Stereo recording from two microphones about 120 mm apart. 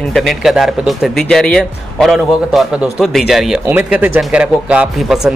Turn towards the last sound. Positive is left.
turn(degrees=-5)  # may be behind; listen again after turning